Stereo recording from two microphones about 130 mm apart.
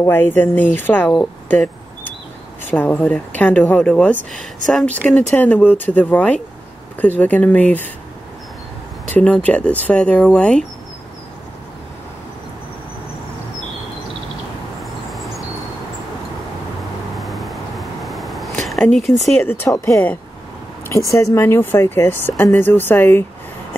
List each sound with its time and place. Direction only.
0.0 s speech: 15° left (ahead or behind)
9.1 s speech: 10° left (ahead or behind)
14.8 s a sound: centre (ahead or behind)
17.2 s a sound: centre (ahead or behind)
19.4 s speech: 15° left (ahead or behind)
21.1 s speech: 25° left (ahead or behind)